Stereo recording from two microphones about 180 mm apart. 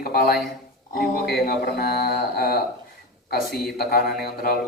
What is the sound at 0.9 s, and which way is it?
A man's voice, 60° left (ahead or behind).